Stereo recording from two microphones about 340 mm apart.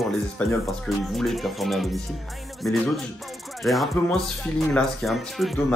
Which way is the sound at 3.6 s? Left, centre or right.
Centre.